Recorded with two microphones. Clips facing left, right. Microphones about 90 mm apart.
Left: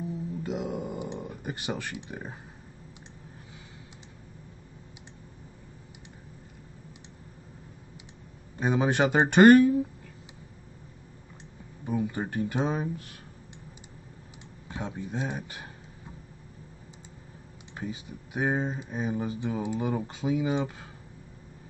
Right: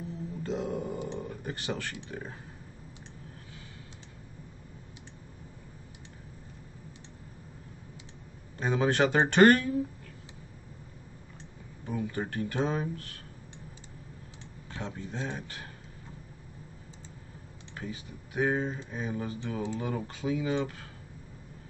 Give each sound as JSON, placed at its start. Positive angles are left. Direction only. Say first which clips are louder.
{"t": 0.4, "sound": "a sound", "louder": "right 1 dB", "side_deg": 10}
{"t": 8.5, "sound": "speech", "louder": "left 1 dB", "side_deg": 15}
{"t": 11.8, "sound": "speech", "louder": "left 3 dB", "side_deg": 15}
{"t": 14.7, "sound": "speech", "louder": "left 3 dB", "side_deg": 15}
{"t": 17.7, "sound": "speech", "louder": "left 3 dB", "side_deg": 20}